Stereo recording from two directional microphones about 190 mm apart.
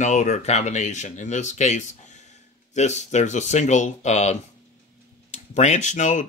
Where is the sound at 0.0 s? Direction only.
40° left (ahead or behind).